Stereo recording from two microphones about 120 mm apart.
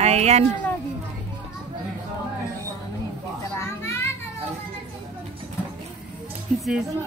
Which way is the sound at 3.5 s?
20° left (ahead or behind).